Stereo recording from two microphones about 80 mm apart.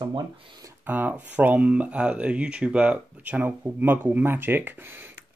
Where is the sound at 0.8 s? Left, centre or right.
Right.